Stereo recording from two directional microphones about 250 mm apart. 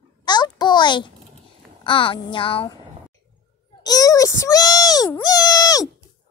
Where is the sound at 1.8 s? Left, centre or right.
Centre.